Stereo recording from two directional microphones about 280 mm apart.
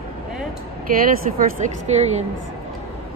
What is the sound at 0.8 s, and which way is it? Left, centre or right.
A woman's voice, right.